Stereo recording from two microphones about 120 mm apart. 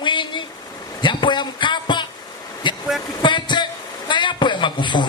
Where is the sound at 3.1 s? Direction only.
40° left (ahead or behind).